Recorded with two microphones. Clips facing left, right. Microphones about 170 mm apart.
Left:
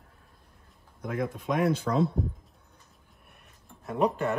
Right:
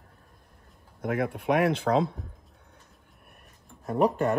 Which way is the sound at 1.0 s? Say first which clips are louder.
Right 3 dB; 65° right (ahead or behind).